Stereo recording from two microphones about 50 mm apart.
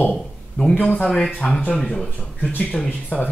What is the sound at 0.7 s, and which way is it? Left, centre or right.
Speech, left.